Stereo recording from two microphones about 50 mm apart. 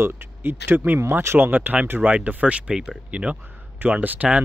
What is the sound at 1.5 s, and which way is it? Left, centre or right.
Speech, right.